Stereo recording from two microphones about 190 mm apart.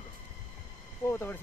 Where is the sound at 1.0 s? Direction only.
10° left (ahead or behind).